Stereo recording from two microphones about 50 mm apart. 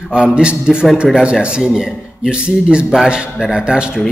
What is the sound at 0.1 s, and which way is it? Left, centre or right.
A man's voice, centre.